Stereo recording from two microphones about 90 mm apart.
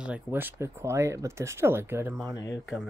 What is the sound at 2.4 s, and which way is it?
Speech, 45° left (ahead or behind).